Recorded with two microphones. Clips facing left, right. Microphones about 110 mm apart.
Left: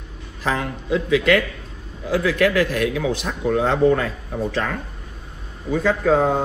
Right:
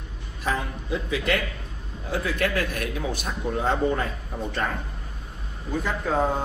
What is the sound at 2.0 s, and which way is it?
A man's voice, 90° left.